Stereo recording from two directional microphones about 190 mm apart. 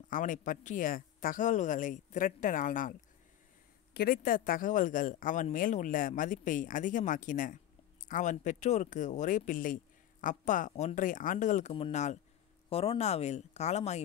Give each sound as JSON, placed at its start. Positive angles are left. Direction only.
{"t": 0.1, "sound": "speech", "side_deg": 40}
{"t": 3.9, "sound": "speech", "side_deg": 50}